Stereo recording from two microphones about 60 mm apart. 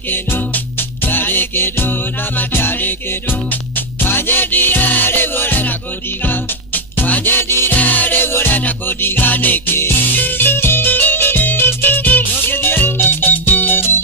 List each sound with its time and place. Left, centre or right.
0.1 s music: left
7.7 s music: left